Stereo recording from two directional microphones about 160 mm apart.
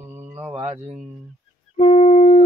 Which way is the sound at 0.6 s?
40° right (ahead or behind).